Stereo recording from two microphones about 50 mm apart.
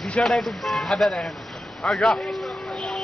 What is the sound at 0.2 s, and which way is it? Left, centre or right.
A man's voice, centre.